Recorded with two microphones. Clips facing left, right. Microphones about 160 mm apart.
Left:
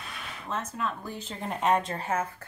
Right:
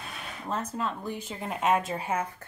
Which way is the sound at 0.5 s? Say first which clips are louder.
Right 1 dB; 30° right (ahead or behind).